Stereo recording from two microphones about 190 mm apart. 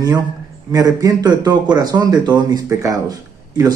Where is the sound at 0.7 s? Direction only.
20° right (ahead or behind).